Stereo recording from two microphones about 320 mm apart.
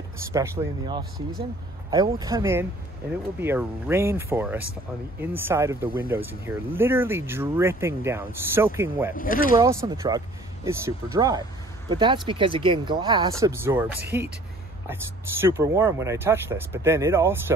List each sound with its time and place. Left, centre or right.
0.3 s speech: centre
9.1 s speech: left
9.6 s speech: centre
15.4 s speech: centre